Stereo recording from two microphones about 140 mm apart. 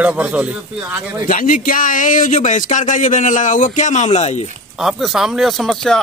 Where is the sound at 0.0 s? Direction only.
10° right (ahead or behind).